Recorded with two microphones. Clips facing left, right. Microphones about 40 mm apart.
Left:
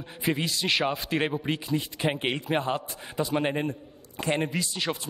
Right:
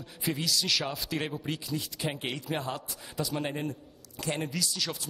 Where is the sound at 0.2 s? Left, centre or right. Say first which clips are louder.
Left 3 dB; left.